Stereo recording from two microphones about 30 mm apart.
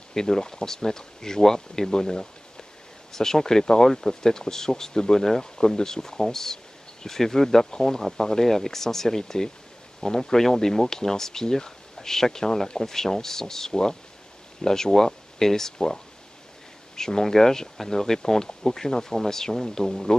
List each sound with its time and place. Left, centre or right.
0.1 s speech: centre